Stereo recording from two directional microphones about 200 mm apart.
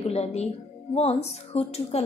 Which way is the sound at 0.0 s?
30° left (ahead or behind).